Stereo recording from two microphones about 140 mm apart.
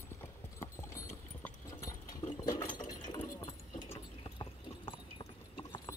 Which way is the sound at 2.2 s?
40° left (ahead or behind).